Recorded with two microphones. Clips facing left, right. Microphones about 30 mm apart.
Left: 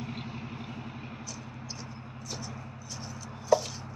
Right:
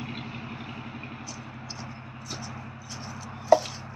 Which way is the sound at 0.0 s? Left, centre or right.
Right.